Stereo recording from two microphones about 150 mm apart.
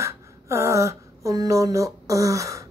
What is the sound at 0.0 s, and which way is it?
Speech, 20° right (ahead or behind).